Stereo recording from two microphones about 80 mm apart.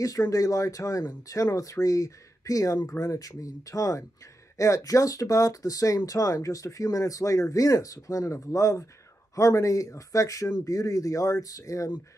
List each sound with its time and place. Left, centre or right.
0.0 s speech: left